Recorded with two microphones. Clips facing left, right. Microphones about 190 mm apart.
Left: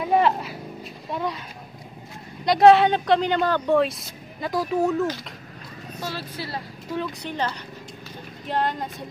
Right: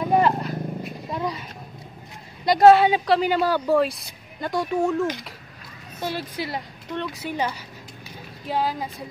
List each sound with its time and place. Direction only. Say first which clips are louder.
0.1 s vehicle: even; 5° left (ahead or behind)
1.1 s speech: even; centre (ahead or behind)
2.4 s speech: right 1 dB; centre (ahead or behind)
5.9 s a woman's voice: right 4 dB; 15° right (ahead or behind)
6.9 s speech: even; centre (ahead or behind)